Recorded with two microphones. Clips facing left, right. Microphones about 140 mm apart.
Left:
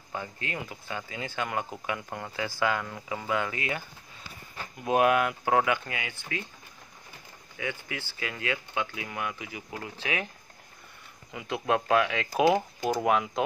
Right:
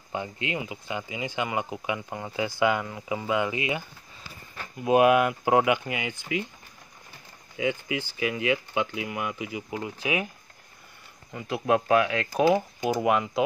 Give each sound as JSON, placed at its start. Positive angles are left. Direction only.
{"t": 0.6, "sound": "speech", "side_deg": -10}
{"t": 2.3, "sound": "speech", "side_deg": -20}
{"t": 4.8, "sound": "speech", "side_deg": -5}
{"t": 7.5, "sound": "speech", "side_deg": -15}
{"t": 11.3, "sound": "speech", "side_deg": 0}